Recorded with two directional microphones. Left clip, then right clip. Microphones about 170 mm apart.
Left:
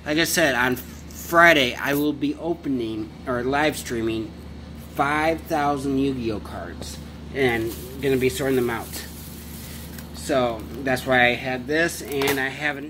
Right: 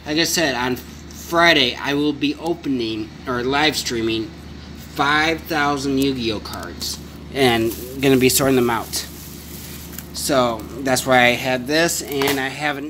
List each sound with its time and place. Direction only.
0.0 s speech: centre (ahead or behind)
7.3 s speech: 30° right (ahead or behind)
8.0 s speech: 45° right (ahead or behind)
10.2 s speech: 30° right (ahead or behind)
11.8 s speech: 20° right (ahead or behind)